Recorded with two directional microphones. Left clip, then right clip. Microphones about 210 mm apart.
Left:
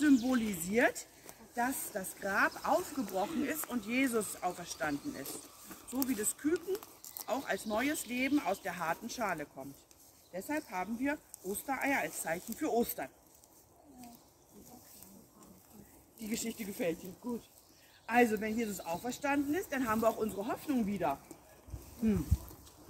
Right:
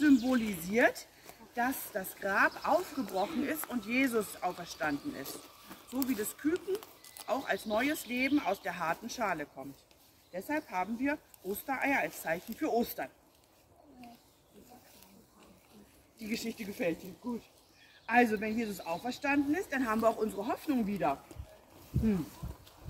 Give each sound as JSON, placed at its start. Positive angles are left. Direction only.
{"t": 0.0, "sound": "speech", "side_deg": 0}
{"t": 5.7, "sound": "a sound", "side_deg": -20}
{"t": 6.0, "sound": "speech", "side_deg": 0}
{"t": 6.5, "sound": "speech", "side_deg": -20}
{"t": 7.2, "sound": "speech", "side_deg": 0}
{"t": 16.2, "sound": "speech", "side_deg": 5}
{"t": 18.0, "sound": "speech", "side_deg": 10}